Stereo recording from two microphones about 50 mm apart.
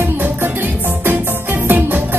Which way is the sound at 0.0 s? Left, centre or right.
Right.